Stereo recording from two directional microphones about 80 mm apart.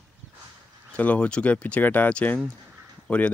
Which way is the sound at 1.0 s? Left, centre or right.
Centre.